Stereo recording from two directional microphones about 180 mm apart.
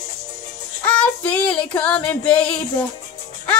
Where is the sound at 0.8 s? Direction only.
5° left (ahead or behind).